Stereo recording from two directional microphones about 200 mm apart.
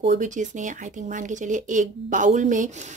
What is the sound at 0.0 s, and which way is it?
Speech, 40° right (ahead or behind).